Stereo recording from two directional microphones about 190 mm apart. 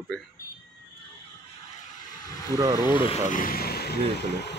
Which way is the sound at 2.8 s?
25° left (ahead or behind).